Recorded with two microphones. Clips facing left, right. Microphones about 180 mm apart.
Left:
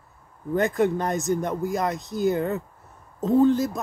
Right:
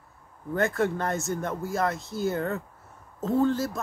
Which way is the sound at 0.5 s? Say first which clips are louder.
Left 4 dB; 15° left (ahead or behind).